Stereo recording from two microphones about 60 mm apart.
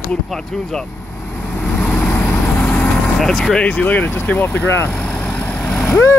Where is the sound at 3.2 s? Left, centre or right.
Centre.